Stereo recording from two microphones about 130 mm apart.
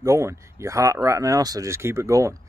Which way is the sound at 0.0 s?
25° right (ahead or behind).